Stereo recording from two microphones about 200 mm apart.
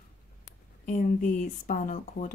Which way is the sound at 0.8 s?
40° left (ahead or behind).